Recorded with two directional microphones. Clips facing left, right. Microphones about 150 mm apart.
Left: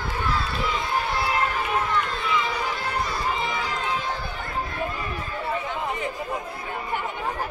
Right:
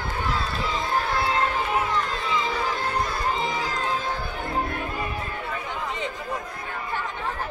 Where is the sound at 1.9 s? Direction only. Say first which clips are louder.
Left 1 dB; 35° right (ahead or behind).